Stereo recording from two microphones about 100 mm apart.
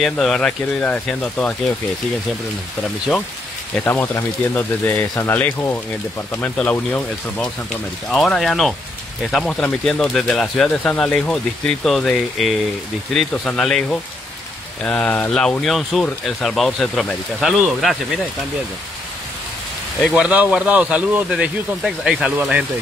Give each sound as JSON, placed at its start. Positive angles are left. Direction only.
{"t": 0.0, "sound": "speech", "side_deg": 5}
{"t": 3.8, "sound": "speech", "side_deg": 20}
{"t": 7.7, "sound": "speech", "side_deg": 5}
{"t": 20.2, "sound": "speech", "side_deg": -10}